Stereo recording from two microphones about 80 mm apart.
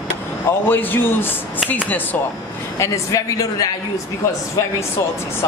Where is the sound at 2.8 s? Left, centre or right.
Left.